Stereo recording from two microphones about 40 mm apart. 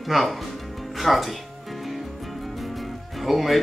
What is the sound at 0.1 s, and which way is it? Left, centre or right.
Speech, centre.